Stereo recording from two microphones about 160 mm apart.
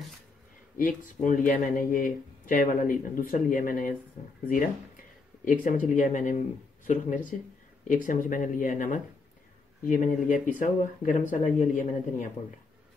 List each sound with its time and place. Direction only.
0.7 s speech: 55° left (ahead or behind)